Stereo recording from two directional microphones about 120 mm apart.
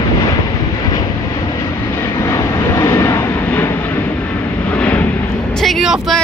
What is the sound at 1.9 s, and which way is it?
Vehicle, 20° left (ahead or behind).